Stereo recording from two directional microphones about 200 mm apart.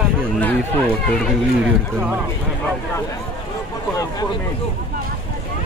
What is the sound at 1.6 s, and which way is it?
Speech, 5° right (ahead or behind).